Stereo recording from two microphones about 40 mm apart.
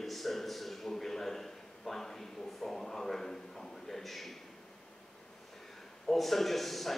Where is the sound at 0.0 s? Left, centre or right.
Centre.